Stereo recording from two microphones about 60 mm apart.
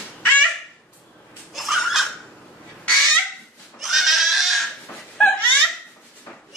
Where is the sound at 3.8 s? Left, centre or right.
Centre.